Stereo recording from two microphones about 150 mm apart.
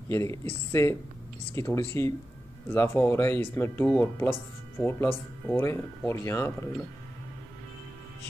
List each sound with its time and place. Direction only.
0.1 s speech: 20° left (ahead or behind)